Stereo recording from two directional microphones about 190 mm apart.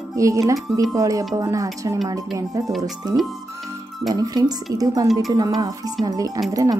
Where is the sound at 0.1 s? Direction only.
15° right (ahead or behind).